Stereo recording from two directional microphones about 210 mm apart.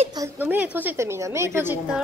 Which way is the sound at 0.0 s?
20° right (ahead or behind).